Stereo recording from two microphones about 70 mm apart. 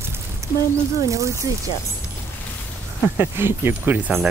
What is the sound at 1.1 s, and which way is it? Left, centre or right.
Speech, right.